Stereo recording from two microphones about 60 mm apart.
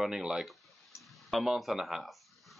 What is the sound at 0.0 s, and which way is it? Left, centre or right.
Speech, centre.